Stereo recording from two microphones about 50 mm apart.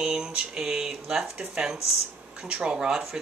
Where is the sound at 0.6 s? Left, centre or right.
Centre.